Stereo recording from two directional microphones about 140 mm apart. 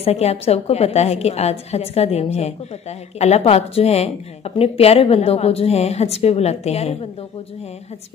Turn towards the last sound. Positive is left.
turn(degrees=50)  # may be behind; listen again after turning